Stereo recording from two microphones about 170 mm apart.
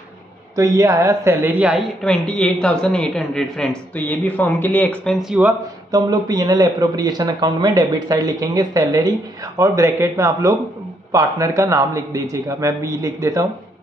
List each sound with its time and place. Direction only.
0.6 s speech: 20° right (ahead or behind)
2.0 s a man's voice: 5° left (ahead or behind)
5.9 s speech: 20° right (ahead or behind)